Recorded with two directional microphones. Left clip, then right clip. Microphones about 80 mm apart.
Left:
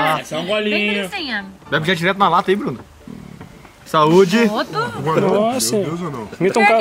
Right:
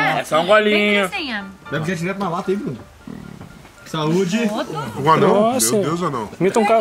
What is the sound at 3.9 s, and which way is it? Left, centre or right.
Speech, left.